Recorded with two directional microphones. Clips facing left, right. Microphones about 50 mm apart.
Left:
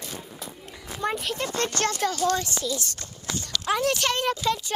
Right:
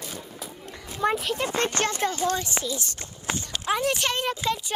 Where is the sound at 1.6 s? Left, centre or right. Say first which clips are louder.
Left 1 dB; right.